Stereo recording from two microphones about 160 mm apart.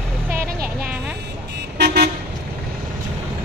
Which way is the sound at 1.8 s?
90° right.